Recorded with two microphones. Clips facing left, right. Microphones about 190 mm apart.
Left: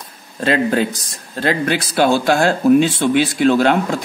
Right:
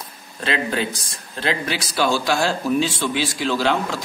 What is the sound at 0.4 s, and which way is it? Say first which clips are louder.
Speech: left 7 dB; 45° left (ahead or behind).